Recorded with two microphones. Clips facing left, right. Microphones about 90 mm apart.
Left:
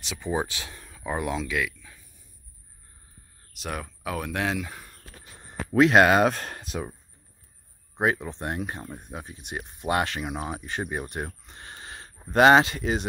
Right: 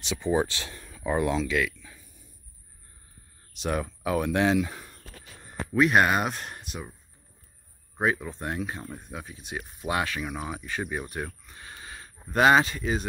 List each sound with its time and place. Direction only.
0.0 s speech: centre (ahead or behind)
3.5 s speech: centre (ahead or behind)
5.8 s speech: 90° left
8.0 s speech: 60° left (ahead or behind)
10.3 s speech: 45° left (ahead or behind)
12.4 s speech: 60° left (ahead or behind)